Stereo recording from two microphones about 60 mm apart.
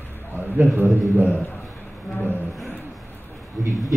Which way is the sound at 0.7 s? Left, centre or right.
Right.